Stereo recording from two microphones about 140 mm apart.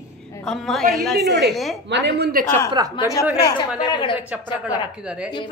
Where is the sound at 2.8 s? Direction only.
30° right (ahead or behind).